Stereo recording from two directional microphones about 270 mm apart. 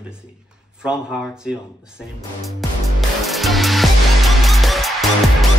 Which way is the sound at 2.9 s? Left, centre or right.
Centre.